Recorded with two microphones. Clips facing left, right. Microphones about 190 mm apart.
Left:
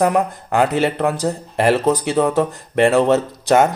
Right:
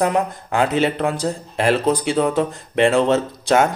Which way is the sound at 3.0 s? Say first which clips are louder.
Left 2 dB; 15° left (ahead or behind).